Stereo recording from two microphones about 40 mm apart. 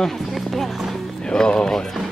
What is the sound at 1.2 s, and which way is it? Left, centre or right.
Speech, centre.